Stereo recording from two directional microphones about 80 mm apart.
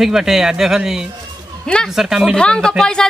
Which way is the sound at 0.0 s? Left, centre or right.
Centre.